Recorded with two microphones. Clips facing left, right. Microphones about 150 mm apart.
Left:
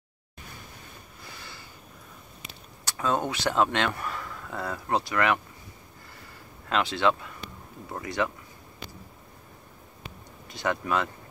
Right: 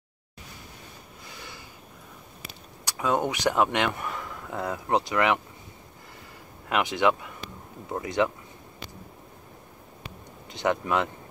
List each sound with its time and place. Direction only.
2.8 s speech: 15° right (ahead or behind)
6.7 s speech: 15° right (ahead or behind)
10.5 s speech: 20° right (ahead or behind)